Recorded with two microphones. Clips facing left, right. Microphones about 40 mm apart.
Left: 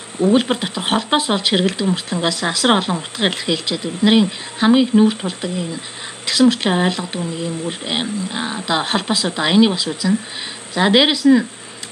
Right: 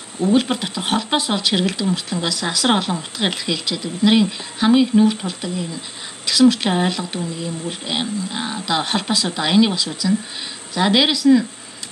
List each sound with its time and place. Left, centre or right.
0.2 s speech: left
7.2 s speech: left
7.9 s speech: centre